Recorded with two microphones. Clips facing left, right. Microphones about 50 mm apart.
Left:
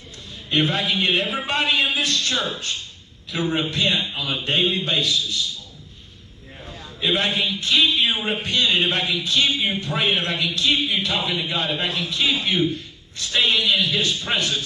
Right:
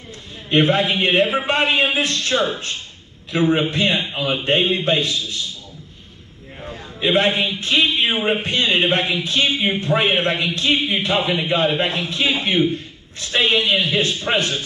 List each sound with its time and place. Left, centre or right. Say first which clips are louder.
0.5 s a man's voice: right 5 dB; right
6.6 s a man's voice: right 4 dB; right